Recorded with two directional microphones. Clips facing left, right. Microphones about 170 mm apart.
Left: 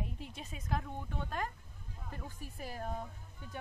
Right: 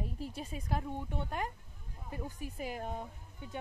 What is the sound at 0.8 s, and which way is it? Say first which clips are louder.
Speech: right 3 dB; 15° right (ahead or behind).